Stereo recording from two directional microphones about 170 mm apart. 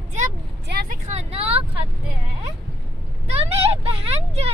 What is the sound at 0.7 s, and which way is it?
Vehicle, 70° right (ahead or behind).